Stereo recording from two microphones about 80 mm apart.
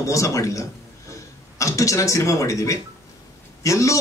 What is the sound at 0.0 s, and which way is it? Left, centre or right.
A man's voice, left.